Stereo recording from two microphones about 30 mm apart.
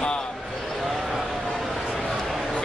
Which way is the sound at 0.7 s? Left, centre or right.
Centre.